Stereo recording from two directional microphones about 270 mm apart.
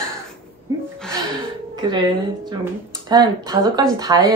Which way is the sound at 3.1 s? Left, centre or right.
Centre.